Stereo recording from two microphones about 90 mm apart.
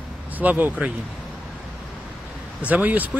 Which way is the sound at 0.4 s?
15° right (ahead or behind).